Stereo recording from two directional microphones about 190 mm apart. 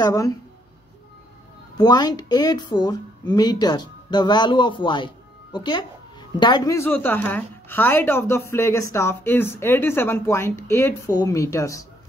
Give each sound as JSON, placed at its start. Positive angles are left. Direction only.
{"t": 0.0, "sound": "speech", "side_deg": 15}
{"t": 1.8, "sound": "a woman's voice", "side_deg": 20}